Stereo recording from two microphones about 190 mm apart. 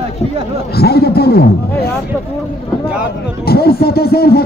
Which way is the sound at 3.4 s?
55° left (ahead or behind).